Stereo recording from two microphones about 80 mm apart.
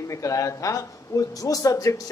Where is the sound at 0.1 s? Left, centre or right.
Left.